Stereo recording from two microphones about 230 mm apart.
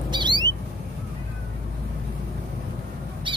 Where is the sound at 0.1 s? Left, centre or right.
Centre.